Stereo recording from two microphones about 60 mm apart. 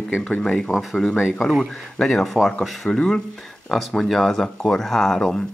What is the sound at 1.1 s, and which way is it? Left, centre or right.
Speech, centre.